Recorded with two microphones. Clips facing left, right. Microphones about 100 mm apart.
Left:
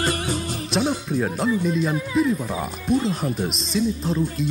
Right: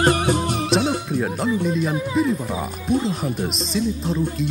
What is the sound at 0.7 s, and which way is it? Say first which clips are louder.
Music: even; centre (ahead or behind).